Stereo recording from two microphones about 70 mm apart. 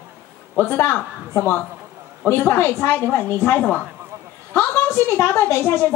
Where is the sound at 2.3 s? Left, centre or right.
Left.